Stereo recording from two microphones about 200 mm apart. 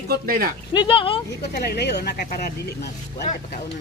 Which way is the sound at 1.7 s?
55° left (ahead or behind).